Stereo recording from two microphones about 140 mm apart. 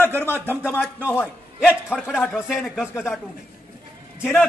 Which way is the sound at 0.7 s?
10° right (ahead or behind).